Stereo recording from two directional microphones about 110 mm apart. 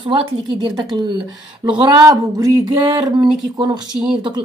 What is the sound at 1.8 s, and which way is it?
A woman's voice, 35° right (ahead or behind).